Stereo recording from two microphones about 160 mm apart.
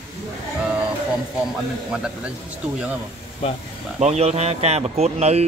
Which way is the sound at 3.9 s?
45° right (ahead or behind).